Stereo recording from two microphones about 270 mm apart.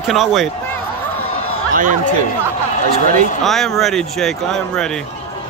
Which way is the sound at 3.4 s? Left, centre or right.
Centre.